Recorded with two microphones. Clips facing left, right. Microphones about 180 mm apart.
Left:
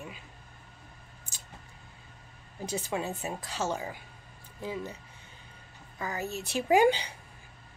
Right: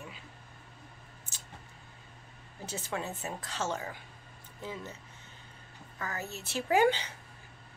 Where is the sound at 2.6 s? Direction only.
15° left (ahead or behind).